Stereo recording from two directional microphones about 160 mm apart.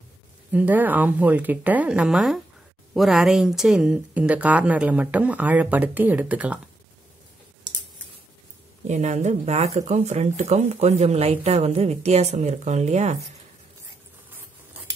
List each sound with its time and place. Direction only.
0.5 s speech: 10° right (ahead or behind)
8.8 s speech: 45° right (ahead or behind)